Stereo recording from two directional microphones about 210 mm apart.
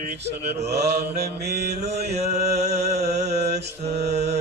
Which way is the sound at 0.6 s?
50° right (ahead or behind).